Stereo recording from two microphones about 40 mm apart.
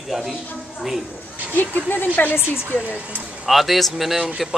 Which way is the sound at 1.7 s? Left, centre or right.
Left.